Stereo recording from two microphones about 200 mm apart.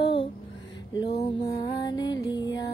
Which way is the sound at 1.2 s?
25° left (ahead or behind).